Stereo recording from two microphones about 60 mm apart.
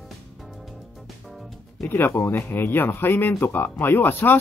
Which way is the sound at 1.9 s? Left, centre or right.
Left.